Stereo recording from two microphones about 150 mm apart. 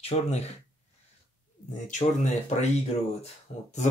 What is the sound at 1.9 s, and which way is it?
Speech, 55° left (ahead or behind).